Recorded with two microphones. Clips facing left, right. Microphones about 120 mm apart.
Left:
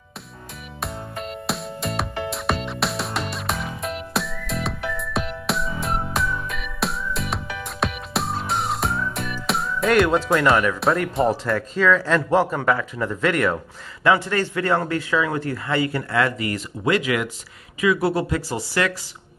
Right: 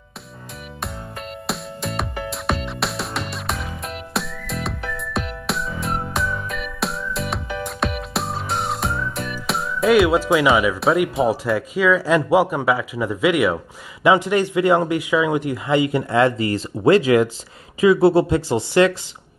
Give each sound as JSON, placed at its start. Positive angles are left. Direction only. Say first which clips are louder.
{"t": 0.7, "sound": "music", "louder": "left 2 dB", "side_deg": 0}
{"t": 14.0, "sound": "a man's voice", "louder": "right 3 dB", "side_deg": -15}